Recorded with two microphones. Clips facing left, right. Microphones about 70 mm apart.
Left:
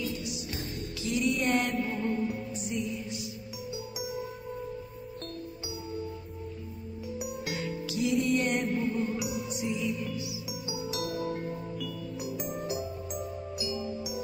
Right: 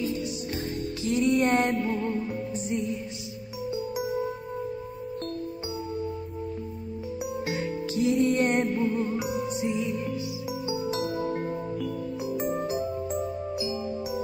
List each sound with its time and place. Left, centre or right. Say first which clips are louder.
1.0 s music: right 5 dB; right
3.7 s music: right 8 dB; right
7.4 s music: right 5 dB; right